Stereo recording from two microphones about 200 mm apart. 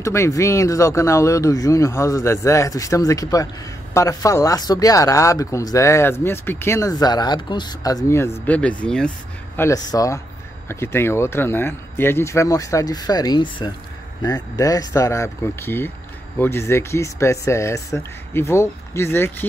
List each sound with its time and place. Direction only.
0.0 s speech: 15° left (ahead or behind)
9.6 s speech: 15° left (ahead or behind)